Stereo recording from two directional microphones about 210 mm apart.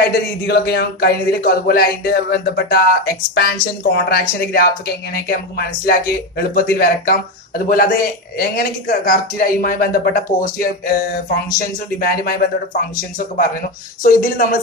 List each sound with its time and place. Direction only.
0.5 s a man's voice: 50° left (ahead or behind)
13.4 s a man's voice: 40° left (ahead or behind)